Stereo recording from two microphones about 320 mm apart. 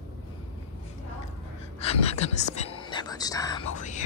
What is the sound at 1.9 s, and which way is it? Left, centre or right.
Speech, centre.